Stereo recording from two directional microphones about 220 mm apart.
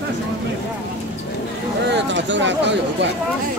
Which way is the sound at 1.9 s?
55° right (ahead or behind).